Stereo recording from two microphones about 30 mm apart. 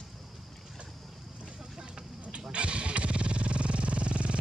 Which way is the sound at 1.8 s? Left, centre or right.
Right.